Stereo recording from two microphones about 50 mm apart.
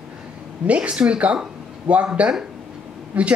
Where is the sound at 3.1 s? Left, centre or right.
Right.